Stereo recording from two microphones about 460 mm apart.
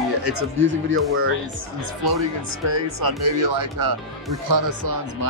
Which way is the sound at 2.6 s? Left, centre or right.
Right.